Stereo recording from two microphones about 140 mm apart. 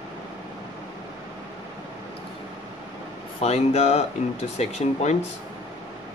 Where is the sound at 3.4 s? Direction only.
50° left (ahead or behind).